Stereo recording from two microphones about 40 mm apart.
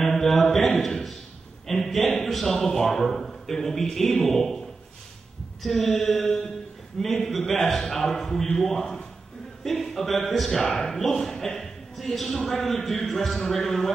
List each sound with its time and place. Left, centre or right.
0.0 s a sound: centre
1.7 s mantra: centre
2.1 s a man's voice: centre
5.6 s mantra: centre
7.5 s a man's voice: centre